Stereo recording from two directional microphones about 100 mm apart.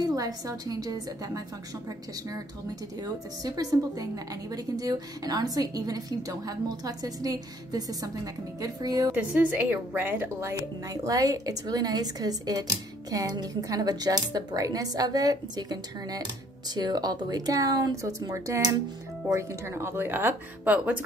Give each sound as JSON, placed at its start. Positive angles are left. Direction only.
{"t": 0.0, "sound": "a woman's voice", "side_deg": -35}
{"t": 3.0, "sound": "a woman's voice", "side_deg": -40}
{"t": 8.5, "sound": "a woman's voice", "side_deg": -35}
{"t": 9.1, "sound": "speech", "side_deg": -15}
{"t": 10.9, "sound": "a woman's voice", "side_deg": -35}